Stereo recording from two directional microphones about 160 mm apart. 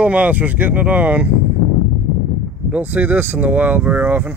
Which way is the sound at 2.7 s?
10° right (ahead or behind).